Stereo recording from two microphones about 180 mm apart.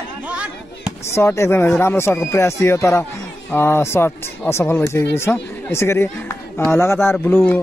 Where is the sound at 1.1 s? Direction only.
15° left (ahead or behind).